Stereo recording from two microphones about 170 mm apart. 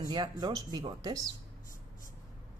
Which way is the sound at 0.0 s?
25° right (ahead or behind).